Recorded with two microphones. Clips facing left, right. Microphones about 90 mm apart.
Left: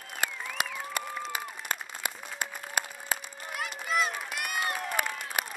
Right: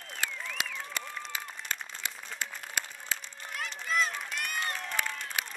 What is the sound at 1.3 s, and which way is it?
Applause, 55° left (ahead or behind).